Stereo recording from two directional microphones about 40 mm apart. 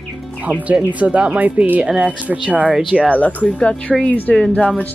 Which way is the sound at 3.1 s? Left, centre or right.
Left.